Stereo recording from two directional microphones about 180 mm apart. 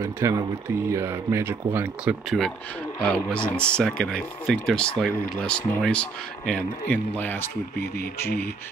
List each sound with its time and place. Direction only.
0.0 s speech: 15° right (ahead or behind)
2.2 s speech: centre (ahead or behind)